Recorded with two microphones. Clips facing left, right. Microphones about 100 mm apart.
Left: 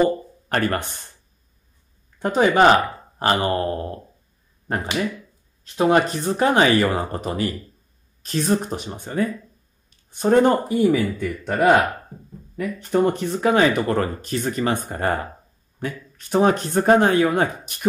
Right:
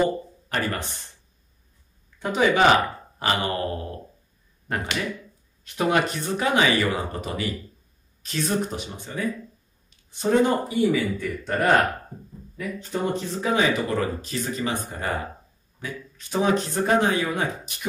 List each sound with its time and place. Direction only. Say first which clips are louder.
0.5 s speech: left 5 dB; 55° left (ahead or behind)
2.1 s speech: left 4 dB; 45° left (ahead or behind)
5.6 s speech: left 5 dB; 35° left (ahead or behind)
9.8 s a sound: left 5 dB; 45° left (ahead or behind)
10.8 s speech: left 2 dB; 60° left (ahead or behind)
11.1 s a man's voice: left 4 dB; 5° left (ahead or behind)
12.5 s speech: left 8 dB; 60° left (ahead or behind)